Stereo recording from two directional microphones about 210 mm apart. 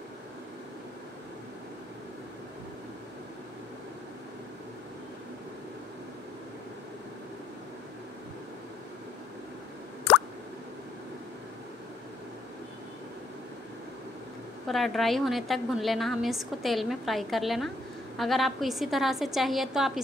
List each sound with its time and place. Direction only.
14.7 s a woman's voice: centre (ahead or behind)